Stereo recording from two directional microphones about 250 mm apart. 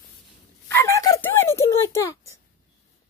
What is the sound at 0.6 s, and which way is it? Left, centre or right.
Speech, centre.